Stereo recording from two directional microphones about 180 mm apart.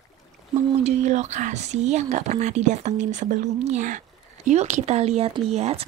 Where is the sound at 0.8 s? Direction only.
40° right (ahead or behind).